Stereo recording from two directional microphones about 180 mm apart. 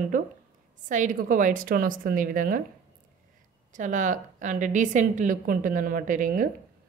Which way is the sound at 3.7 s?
45° right (ahead or behind).